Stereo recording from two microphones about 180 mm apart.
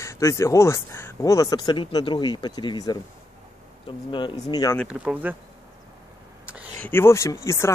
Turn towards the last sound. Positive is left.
turn(degrees=15)  # may be behind; listen again after turning